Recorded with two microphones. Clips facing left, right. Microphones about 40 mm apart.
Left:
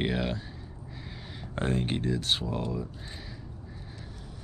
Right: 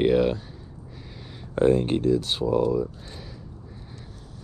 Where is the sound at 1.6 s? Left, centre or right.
Centre.